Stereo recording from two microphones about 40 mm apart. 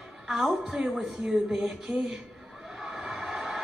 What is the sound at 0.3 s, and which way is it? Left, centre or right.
Speech, centre.